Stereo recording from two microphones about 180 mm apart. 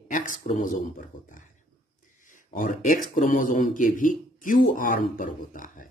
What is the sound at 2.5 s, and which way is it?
Speech, 50° left (ahead or behind).